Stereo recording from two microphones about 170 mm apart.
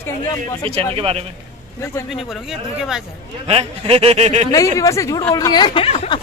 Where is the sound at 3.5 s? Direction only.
35° right (ahead or behind).